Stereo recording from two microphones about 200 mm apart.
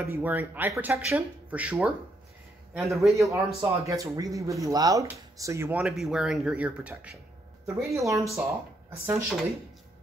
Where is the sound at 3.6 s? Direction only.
15° right (ahead or behind).